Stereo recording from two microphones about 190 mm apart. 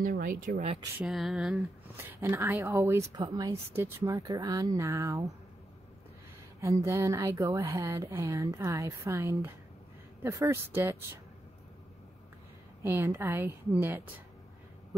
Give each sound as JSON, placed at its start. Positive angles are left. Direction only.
{"t": 0.0, "sound": "speech", "side_deg": -45}
{"t": 0.9, "sound": "speech", "side_deg": 0}
{"t": 2.0, "sound": "a woman's voice", "side_deg": -15}
{"t": 6.6, "sound": "a woman's voice", "side_deg": -15}
{"t": 12.8, "sound": "a woman's voice", "side_deg": -15}